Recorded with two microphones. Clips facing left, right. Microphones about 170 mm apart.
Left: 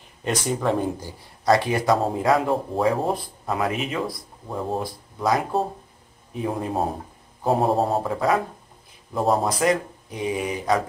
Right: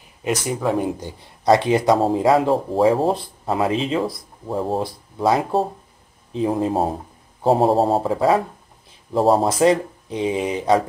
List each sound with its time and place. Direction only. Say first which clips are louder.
0.2 s speech: right 2 dB; 10° right (ahead or behind)
1.0 s speech: right 3 dB; 20° right (ahead or behind)